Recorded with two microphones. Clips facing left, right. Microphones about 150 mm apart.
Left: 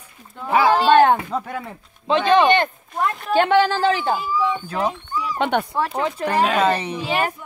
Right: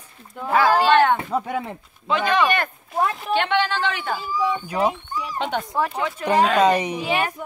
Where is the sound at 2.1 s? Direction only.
25° left (ahead or behind).